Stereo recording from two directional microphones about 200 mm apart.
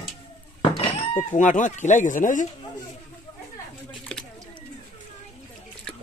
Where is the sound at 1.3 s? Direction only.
40° left (ahead or behind).